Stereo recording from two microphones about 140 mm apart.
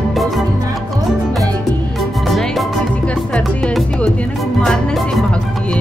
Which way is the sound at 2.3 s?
Centre (ahead or behind).